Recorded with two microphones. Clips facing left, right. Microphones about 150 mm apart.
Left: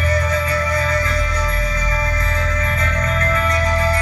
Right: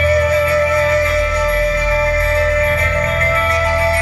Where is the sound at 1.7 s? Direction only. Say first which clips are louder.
Right 8 dB; 30° right (ahead or behind).